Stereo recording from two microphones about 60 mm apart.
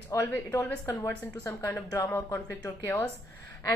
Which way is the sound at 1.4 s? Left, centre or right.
Left.